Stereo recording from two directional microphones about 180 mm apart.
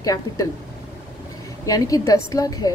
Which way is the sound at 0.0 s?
20° left (ahead or behind).